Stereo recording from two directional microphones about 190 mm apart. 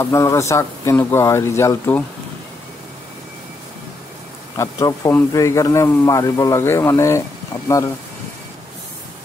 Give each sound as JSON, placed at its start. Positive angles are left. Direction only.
{"t": 0.0, "sound": "speech", "side_deg": 15}
{"t": 4.6, "sound": "speech", "side_deg": 15}